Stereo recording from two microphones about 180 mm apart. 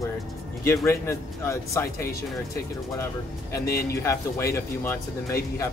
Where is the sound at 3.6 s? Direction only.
60° left (ahead or behind).